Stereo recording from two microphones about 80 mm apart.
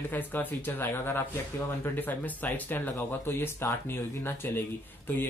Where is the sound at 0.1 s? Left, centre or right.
Left.